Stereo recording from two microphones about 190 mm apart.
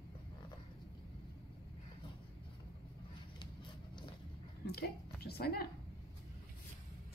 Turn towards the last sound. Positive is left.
turn(degrees=55)  # may be behind; listen again after turning